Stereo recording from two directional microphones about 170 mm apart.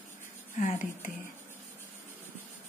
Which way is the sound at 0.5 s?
50° left (ahead or behind).